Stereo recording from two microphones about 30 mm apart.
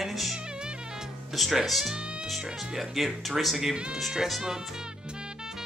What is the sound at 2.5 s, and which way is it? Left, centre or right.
Speech, centre.